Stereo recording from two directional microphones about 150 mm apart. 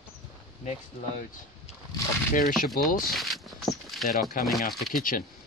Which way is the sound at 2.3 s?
70° left (ahead or behind).